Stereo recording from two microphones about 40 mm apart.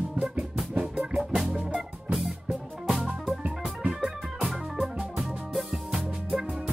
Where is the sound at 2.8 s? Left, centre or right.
Centre.